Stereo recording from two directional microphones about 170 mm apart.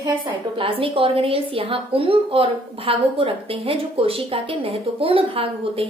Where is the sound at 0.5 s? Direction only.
30° right (ahead or behind).